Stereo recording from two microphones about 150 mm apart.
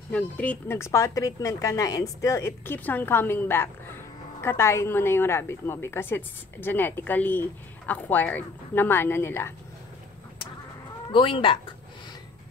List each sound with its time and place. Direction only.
0.1 s a woman's voice: 10° left (ahead or behind)
11.1 s speech: 35° left (ahead or behind)